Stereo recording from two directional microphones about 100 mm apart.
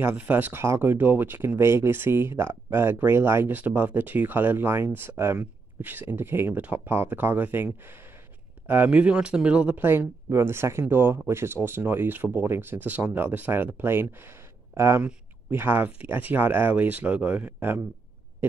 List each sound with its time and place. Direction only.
0.0 s speech: 20° right (ahead or behind)